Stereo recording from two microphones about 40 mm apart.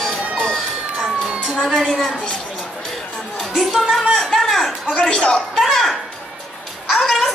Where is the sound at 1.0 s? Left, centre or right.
Centre.